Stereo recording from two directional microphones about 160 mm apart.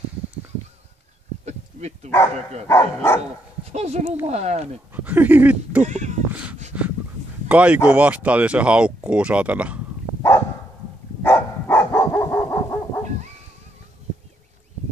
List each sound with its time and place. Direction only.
1.4 s a sound: 45° right (ahead or behind)
2.7 s speech: 15° left (ahead or behind)
3.7 s speech: 45° right (ahead or behind)
4.9 s speech: 10° right (ahead or behind)
5.9 s speech: 45° right (ahead or behind)
7.4 s speech: 10° right (ahead or behind)
11.2 s dog: 15° left (ahead or behind)